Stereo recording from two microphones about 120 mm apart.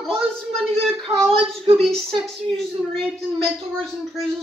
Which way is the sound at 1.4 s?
55° right (ahead or behind).